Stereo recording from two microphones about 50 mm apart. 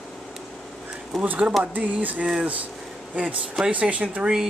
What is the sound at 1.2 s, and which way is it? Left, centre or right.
Speech, right.